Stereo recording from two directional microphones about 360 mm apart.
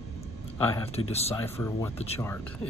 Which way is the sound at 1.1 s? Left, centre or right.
Centre.